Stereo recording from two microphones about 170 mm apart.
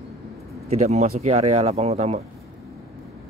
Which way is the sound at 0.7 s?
40° right (ahead or behind).